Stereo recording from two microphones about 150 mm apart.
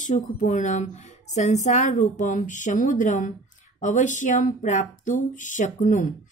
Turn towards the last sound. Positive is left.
turn(degrees=55)  # may be behind; listen again after turning